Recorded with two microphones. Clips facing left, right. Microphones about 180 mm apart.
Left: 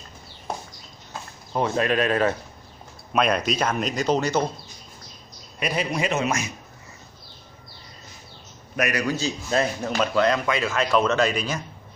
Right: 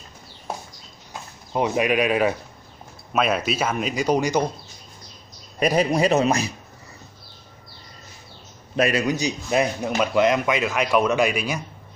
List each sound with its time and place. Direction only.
1.5 s a man's voice: 15° right (ahead or behind)
5.6 s a man's voice: 40° right (ahead or behind)
8.7 s a man's voice: 25° right (ahead or behind)